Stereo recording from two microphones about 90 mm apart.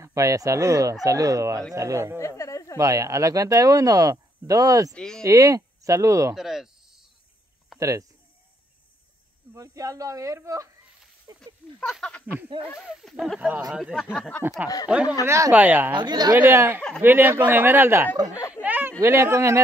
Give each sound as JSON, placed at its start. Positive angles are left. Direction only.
{"t": 0.0, "sound": "speech", "side_deg": -35}
{"t": 2.1, "sound": "a sound", "side_deg": 35}
{"t": 2.8, "sound": "speech", "side_deg": -40}
{"t": 4.9, "sound": "speech", "side_deg": 5}
{"t": 5.2, "sound": "speech", "side_deg": -35}
{"t": 6.3, "sound": "snake", "side_deg": -5}
{"t": 7.8, "sound": "speech", "side_deg": -35}
{"t": 9.6, "sound": "speech", "side_deg": -40}
{"t": 11.3, "sound": "a sound", "side_deg": 5}
{"t": 12.8, "sound": "speech", "side_deg": -5}
{"t": 15.2, "sound": "speech", "side_deg": -35}
{"t": 15.5, "sound": "speech", "side_deg": -20}
{"t": 15.9, "sound": "speech", "side_deg": -55}
{"t": 16.3, "sound": "speech", "side_deg": -25}